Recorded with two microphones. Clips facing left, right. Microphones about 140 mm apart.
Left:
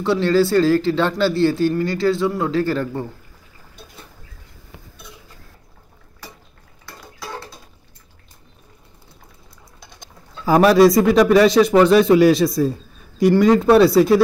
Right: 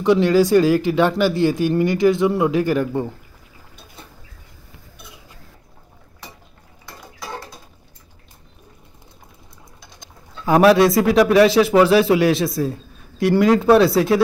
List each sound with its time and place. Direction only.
0.0 s speech: 15° right (ahead or behind)
10.4 s speech: centre (ahead or behind)